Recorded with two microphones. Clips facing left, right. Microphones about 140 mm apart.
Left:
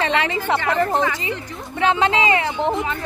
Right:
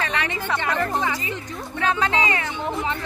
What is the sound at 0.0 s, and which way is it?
Speech, 25° left (ahead or behind).